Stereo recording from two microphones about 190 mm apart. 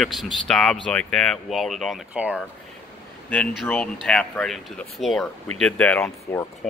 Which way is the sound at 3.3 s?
5° left (ahead or behind).